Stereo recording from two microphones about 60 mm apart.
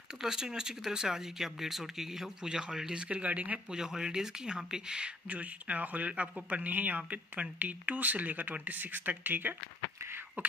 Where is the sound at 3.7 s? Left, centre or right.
Centre.